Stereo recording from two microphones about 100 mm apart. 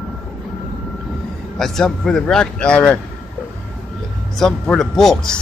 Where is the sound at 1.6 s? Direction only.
5° left (ahead or behind).